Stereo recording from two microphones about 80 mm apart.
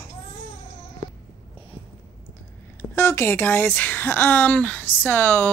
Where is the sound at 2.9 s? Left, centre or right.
Left.